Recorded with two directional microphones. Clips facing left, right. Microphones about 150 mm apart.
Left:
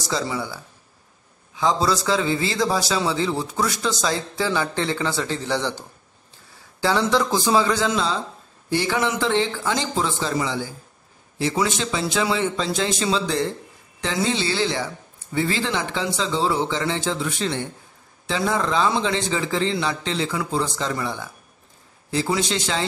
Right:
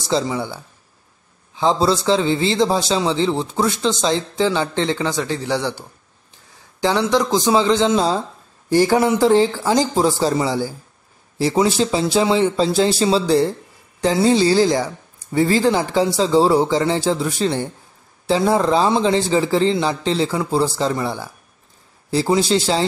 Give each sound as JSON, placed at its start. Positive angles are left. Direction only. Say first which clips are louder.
{"t": 0.0, "sound": "a man's voice", "louder": "right 5 dB", "side_deg": -25}
{"t": 8.6, "sound": "speech", "louder": "right 8 dB", "side_deg": -40}